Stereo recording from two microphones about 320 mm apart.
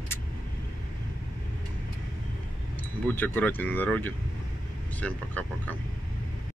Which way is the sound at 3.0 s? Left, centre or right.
Centre.